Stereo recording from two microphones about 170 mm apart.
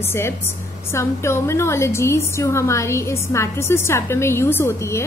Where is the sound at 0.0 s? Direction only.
15° left (ahead or behind).